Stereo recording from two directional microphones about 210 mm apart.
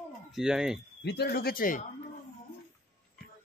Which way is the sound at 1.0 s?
50° left (ahead or behind).